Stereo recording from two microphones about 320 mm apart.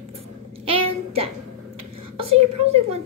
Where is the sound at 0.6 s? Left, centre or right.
Centre.